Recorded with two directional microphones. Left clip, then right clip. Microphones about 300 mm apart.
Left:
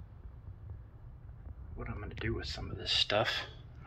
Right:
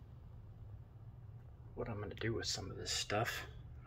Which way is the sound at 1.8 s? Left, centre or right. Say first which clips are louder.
Even; right.